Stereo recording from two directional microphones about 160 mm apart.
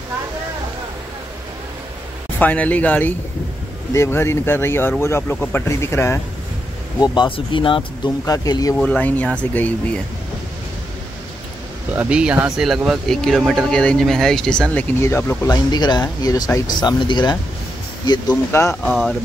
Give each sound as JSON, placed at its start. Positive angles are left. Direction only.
{"t": 2.3, "sound": "speech", "side_deg": 10}
{"t": 7.0, "sound": "speech", "side_deg": 30}
{"t": 8.7, "sound": "speech", "side_deg": 5}
{"t": 11.9, "sound": "speech", "side_deg": -10}
{"t": 18.9, "sound": "speech", "side_deg": 0}